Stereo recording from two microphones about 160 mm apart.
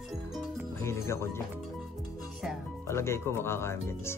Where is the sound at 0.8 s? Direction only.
15° left (ahead or behind).